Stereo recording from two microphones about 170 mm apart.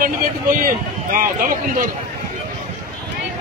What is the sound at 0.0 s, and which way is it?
Speech, 55° right (ahead or behind).